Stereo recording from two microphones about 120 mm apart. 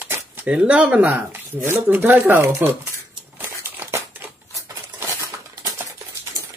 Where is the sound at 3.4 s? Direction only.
20° right (ahead or behind).